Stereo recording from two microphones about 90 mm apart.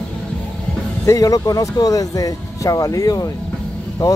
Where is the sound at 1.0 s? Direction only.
40° left (ahead or behind).